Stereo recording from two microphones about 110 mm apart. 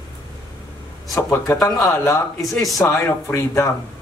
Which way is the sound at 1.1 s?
25° left (ahead or behind).